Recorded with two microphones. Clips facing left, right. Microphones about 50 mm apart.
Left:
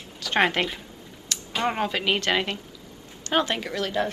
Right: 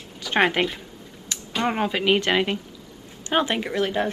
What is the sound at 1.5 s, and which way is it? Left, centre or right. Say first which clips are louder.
A woman's voice: right 2 dB; centre.